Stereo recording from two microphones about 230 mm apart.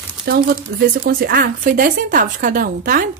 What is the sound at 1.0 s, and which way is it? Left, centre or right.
A woman's voice, right.